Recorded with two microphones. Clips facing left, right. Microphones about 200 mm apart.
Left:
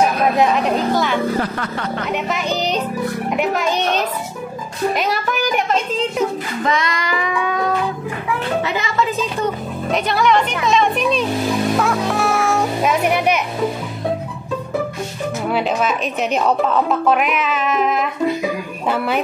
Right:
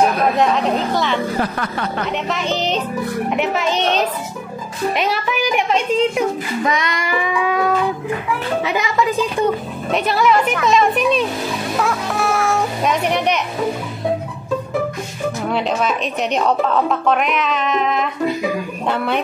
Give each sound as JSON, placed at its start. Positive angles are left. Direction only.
{"t": 2.3, "sound": "speech", "side_deg": 0}
{"t": 4.9, "sound": "speech", "side_deg": 0}
{"t": 6.6, "sound": "a woman's voice", "side_deg": -20}
{"t": 8.6, "sound": "a woman's voice", "side_deg": -15}
{"t": 9.9, "sound": "speech", "side_deg": 0}
{"t": 15.5, "sound": "speech", "side_deg": 0}